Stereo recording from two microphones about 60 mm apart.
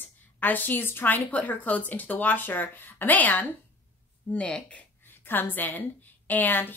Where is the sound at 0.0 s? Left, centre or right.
Left.